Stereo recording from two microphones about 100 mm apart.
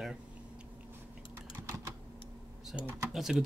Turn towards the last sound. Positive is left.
turn(degrees=-5)  # may be behind; listen again after turning